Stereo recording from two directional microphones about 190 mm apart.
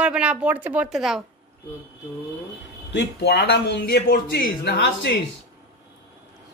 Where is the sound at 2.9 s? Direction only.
65° left (ahead or behind).